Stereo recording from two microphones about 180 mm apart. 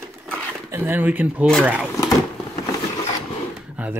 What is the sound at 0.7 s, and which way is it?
Speech, 10° right (ahead or behind).